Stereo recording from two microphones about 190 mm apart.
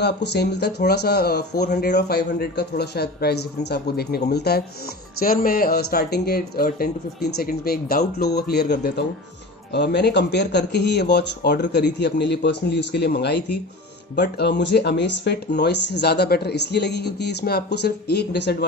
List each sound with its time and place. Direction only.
0.0 s speech: 60° left (ahead or behind)